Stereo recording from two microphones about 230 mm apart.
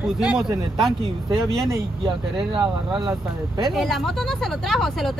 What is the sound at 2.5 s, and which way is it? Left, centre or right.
Speech, centre.